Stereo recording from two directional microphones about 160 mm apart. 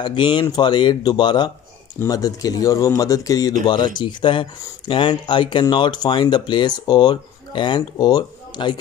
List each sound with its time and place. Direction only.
0.0 s speech: 30° left (ahead or behind)